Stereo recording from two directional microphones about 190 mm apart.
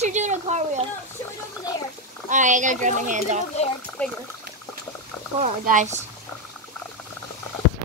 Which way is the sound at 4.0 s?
5° left (ahead or behind).